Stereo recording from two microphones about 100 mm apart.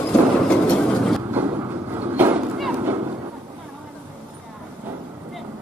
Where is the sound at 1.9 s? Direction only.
20° right (ahead or behind).